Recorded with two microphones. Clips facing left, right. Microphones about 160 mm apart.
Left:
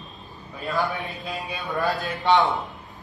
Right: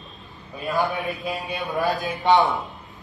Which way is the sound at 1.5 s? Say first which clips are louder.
Right 1 dB; 15° right (ahead or behind).